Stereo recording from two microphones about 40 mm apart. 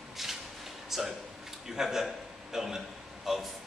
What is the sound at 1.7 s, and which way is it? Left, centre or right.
A man's voice, centre.